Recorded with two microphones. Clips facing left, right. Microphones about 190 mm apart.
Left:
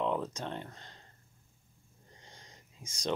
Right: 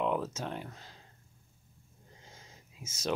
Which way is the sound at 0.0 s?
5° right (ahead or behind).